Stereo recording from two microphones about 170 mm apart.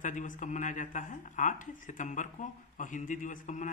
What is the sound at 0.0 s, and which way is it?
Speech, 50° left (ahead or behind).